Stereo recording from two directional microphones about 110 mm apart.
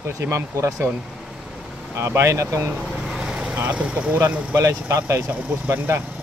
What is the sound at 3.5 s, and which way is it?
Speech, 15° right (ahead or behind).